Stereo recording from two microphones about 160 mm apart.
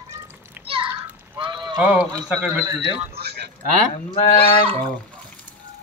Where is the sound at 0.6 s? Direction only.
35° right (ahead or behind).